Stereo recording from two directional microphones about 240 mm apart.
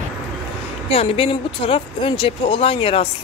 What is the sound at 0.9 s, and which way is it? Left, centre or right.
Speech, left.